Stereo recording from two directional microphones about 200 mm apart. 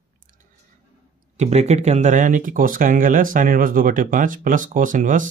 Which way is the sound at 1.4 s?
35° right (ahead or behind).